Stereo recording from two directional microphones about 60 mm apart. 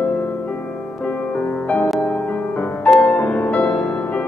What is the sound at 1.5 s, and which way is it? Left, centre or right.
Music, left.